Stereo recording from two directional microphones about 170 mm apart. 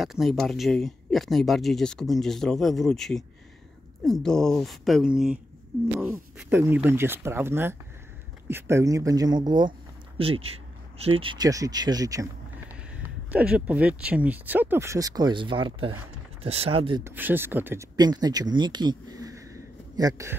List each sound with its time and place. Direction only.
0.0 s speech: centre (ahead or behind); by 12.3 s 20° right (ahead or behind)
13.3 s speech: 10° right (ahead or behind); by 17.0 s 35° right (ahead or behind)
17.0 s speech: 10° right (ahead or behind)
17.9 s speech: 25° right (ahead or behind)